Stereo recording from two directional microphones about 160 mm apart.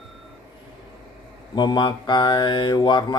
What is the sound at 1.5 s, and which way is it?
Speech, 25° left (ahead or behind).